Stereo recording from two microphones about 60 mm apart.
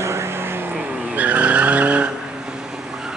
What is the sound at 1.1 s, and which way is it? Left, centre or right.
Vehicle, right.